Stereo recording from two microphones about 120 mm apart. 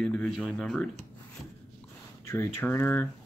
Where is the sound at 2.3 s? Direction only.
20° left (ahead or behind).